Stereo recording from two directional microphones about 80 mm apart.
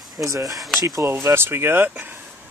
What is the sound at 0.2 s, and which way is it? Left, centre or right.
Speech, right.